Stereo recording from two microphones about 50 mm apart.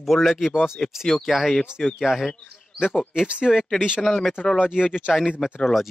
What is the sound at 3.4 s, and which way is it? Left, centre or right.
Speech, centre.